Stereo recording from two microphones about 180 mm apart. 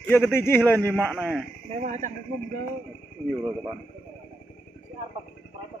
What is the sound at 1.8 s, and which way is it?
Speech, 45° right (ahead or behind).